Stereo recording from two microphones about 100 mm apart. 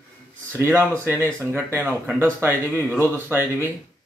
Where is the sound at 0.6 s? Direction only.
20° right (ahead or behind).